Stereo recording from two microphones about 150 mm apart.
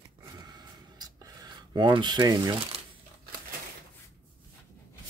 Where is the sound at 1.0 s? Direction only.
30° right (ahead or behind).